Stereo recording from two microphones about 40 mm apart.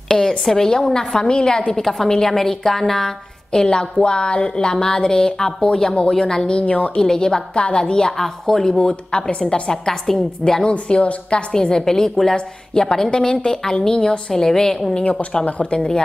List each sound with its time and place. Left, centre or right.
0.1 s a sound: left
0.5 s a woman's voice: centre
1.8 s a woman's voice: centre
6.5 s speech: left
7.0 s a woman's voice: centre
10.7 s speech: left
11.5 s a woman's voice: centre
14.3 s a woman's voice: centre
15.0 s speech: left